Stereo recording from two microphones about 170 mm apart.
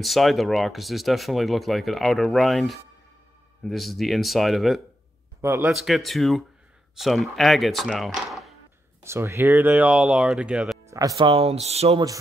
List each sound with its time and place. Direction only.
0.0 s speech: centre (ahead or behind)
5.4 s a man's voice: 15° right (ahead or behind)
5.7 s speech: centre (ahead or behind)
9.0 s speech: 15° right (ahead or behind)
10.9 s music: 20° right (ahead or behind)
11.1 s speech: 30° right (ahead or behind)